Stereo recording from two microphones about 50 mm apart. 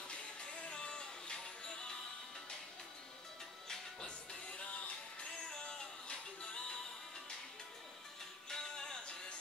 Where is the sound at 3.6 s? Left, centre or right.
Centre.